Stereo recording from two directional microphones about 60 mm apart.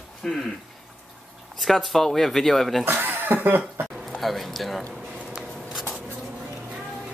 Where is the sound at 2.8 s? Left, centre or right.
Right.